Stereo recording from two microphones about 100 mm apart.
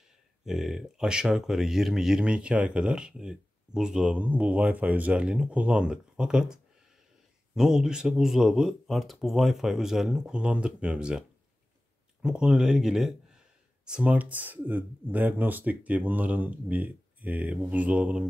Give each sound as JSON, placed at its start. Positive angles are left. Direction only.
{"t": 0.5, "sound": "a man's voice", "side_deg": -5}